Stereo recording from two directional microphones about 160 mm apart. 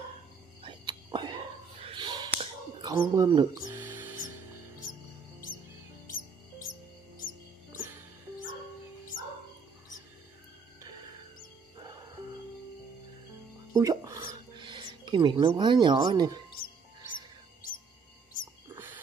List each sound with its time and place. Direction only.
0.6 s hiccup: 30° right (ahead or behind)
2.8 s speech: 25° right (ahead or behind)
3.8 s music: 15° right (ahead or behind)
6.0 s music: 60° left (ahead or behind)
13.7 s music: 20° right (ahead or behind)
15.0 s speech: 25° right (ahead or behind)